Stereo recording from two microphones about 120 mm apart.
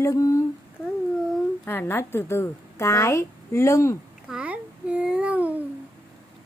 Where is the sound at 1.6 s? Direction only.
20° left (ahead or behind).